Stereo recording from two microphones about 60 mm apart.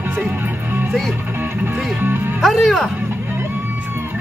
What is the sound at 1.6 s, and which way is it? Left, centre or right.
Music, right.